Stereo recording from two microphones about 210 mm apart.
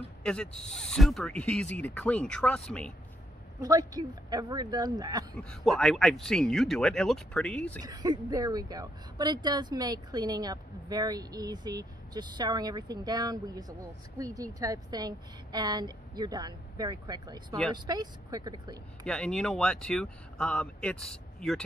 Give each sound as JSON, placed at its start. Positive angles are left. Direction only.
{"t": 0.2, "sound": "speech", "side_deg": 5}
{"t": 3.6, "sound": "speech", "side_deg": -15}
{"t": 5.3, "sound": "speech", "side_deg": 5}
{"t": 7.8, "sound": "speech", "side_deg": -20}
{"t": 19.0, "sound": "speech", "side_deg": 5}